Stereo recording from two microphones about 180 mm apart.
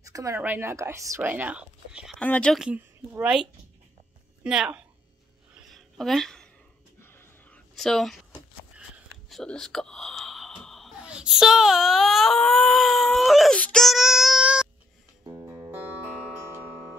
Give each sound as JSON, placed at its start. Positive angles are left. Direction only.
{"t": 0.1, "sound": "speech", "side_deg": -20}
{"t": 2.1, "sound": "speech", "side_deg": 5}
{"t": 5.7, "sound": "a sound", "side_deg": 0}
{"t": 7.7, "sound": "a sound", "side_deg": 0}
{"t": 9.3, "sound": "speech", "side_deg": 5}
{"t": 15.2, "sound": "music", "side_deg": -15}